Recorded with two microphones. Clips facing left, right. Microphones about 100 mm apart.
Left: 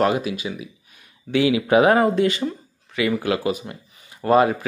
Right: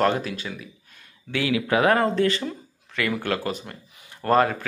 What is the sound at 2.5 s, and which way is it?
Speech, 5° left (ahead or behind).